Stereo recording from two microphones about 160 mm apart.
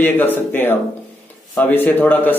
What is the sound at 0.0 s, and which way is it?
A man's voice, 10° left (ahead or behind).